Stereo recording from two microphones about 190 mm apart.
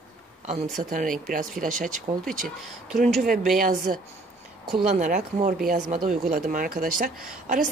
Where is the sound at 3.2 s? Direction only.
50° right (ahead or behind).